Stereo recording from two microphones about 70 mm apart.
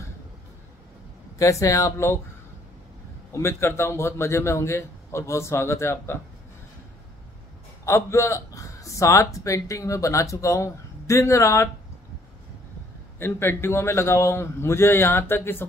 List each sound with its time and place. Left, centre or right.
1.4 s a man's voice: left
3.3 s a man's voice: left
7.8 s a man's voice: left
13.2 s a man's voice: left